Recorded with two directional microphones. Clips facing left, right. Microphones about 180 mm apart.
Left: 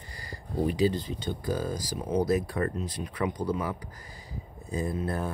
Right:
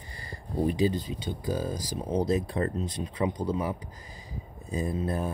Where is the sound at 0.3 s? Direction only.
25° right (ahead or behind).